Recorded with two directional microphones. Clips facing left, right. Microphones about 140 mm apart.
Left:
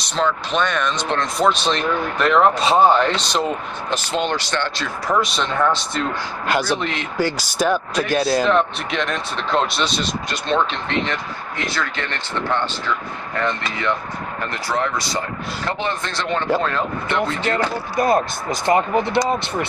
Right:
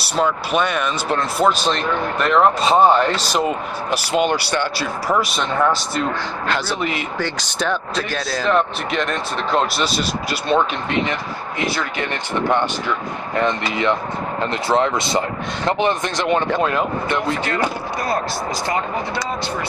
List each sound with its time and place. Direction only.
0.0 s speech: 10° right (ahead or behind)
6.4 s speech: 10° left (ahead or behind)
6.8 s speech: 5° right (ahead or behind)
7.2 s speech: 10° left (ahead or behind)
8.5 s speech: centre (ahead or behind)
18.0 s speech: 20° left (ahead or behind)